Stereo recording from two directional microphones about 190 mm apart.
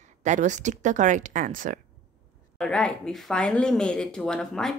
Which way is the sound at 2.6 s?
5° left (ahead or behind).